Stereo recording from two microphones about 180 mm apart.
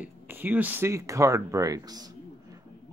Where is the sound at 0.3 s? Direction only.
10° right (ahead or behind).